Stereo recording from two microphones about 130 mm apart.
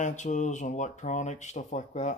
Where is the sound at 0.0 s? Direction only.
70° left (ahead or behind).